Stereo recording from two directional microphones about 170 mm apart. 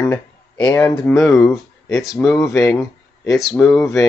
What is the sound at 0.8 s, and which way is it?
Speech, 10° left (ahead or behind).